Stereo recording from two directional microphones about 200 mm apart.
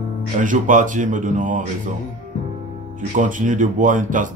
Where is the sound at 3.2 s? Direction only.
40° right (ahead or behind).